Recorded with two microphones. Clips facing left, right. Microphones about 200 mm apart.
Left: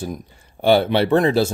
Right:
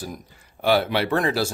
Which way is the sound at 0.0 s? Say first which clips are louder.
Left 6 dB; 25° left (ahead or behind).